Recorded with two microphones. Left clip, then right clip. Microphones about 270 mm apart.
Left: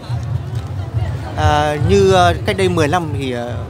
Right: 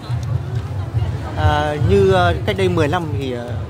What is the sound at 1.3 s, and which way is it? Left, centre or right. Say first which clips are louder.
Speech: left 4 dB; centre.